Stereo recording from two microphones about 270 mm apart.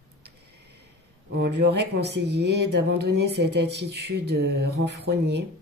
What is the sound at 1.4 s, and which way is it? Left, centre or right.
Speech, right.